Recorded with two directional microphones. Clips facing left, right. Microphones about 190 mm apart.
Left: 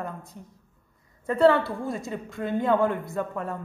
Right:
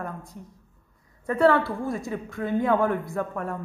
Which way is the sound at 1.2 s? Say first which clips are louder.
Left 1 dB; 25° left (ahead or behind).